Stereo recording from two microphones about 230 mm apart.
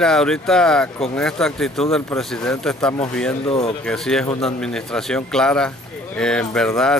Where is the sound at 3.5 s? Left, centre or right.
Left.